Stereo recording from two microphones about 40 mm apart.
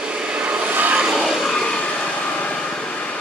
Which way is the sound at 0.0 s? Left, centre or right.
Right.